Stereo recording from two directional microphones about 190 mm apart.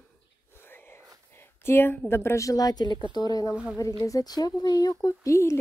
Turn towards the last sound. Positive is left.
turn(degrees=15)  # may be behind; listen again after turning